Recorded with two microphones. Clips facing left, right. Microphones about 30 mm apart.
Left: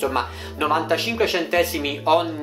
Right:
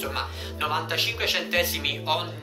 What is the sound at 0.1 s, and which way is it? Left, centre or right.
Speech, centre.